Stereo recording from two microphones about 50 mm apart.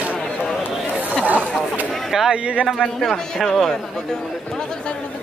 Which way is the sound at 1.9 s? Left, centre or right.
Centre.